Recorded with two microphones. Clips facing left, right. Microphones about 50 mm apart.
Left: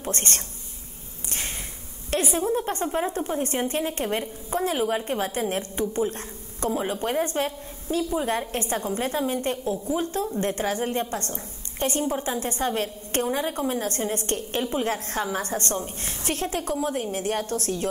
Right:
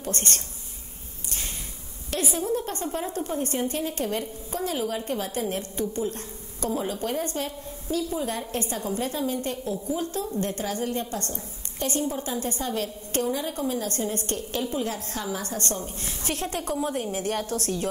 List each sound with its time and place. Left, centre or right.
0.0 s a woman's voice: left
2.0 s a woman's voice: left
16.3 s a woman's voice: centre